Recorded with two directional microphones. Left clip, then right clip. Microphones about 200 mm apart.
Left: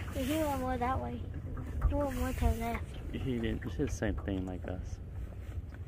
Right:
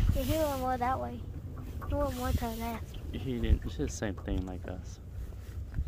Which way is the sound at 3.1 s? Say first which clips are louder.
Even; 5° right (ahead or behind).